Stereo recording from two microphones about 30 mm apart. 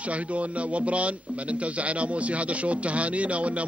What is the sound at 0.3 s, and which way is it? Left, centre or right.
Speech, right.